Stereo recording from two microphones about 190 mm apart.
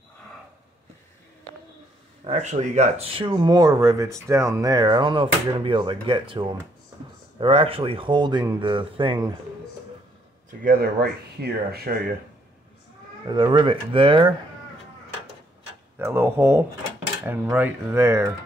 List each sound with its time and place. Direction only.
2.2 s speech: 35° right (ahead or behind)
10.6 s speech: 50° right (ahead or behind)
13.3 s speech: 25° right (ahead or behind)
16.0 s speech: 10° right (ahead or behind)